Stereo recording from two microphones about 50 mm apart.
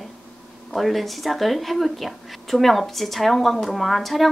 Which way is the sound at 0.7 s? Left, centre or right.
Centre.